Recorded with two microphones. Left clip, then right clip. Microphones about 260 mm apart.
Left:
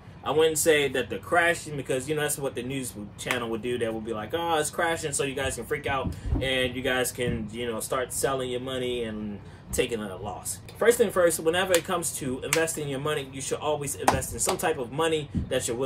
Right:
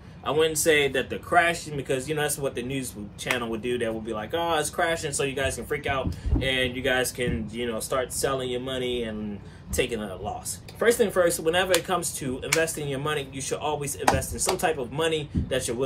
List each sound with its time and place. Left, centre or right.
0.2 s speech: centre